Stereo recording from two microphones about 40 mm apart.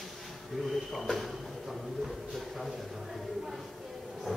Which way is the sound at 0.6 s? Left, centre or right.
Centre.